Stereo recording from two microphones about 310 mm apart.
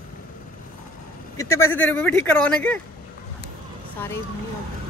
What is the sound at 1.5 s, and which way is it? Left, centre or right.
Speech, centre.